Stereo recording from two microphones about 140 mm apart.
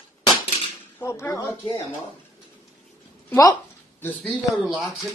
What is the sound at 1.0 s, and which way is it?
Speech, 20° left (ahead or behind).